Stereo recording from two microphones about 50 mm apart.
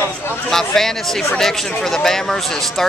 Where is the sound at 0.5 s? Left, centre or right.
Centre.